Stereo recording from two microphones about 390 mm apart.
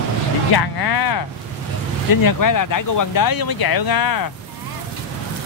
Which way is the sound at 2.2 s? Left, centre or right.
Left.